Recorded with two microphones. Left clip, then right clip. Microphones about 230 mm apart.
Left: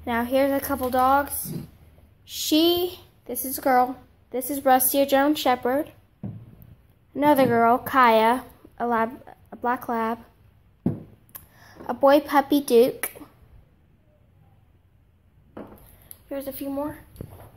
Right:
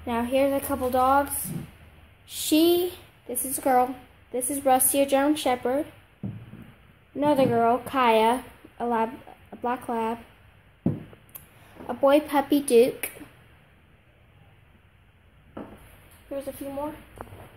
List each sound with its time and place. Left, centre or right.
0.0 s a woman's voice: centre
7.2 s a woman's voice: centre
11.9 s a woman's voice: centre
16.3 s speech: centre